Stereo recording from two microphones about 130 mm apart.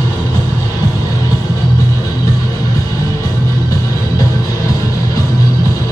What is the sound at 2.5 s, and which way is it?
Music, 25° left (ahead or behind).